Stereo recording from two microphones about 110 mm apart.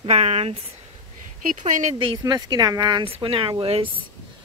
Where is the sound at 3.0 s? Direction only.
55° right (ahead or behind).